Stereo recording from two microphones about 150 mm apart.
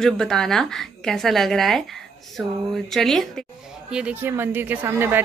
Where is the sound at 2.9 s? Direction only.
Centre (ahead or behind).